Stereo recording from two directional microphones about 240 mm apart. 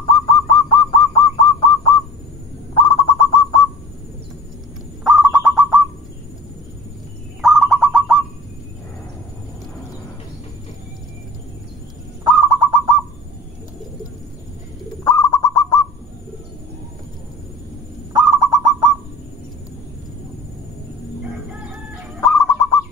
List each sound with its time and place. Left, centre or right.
0.0 s bird: centre
5.0 s bird: centre
7.4 s bird: centre
12.3 s owl: centre
15.0 s bird: centre
18.4 s bird: centre
22.2 s bird: centre